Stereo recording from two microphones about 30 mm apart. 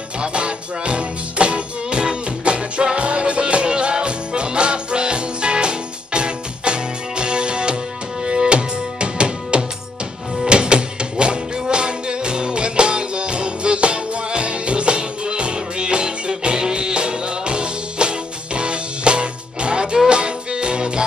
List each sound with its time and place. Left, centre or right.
0.2 s music: right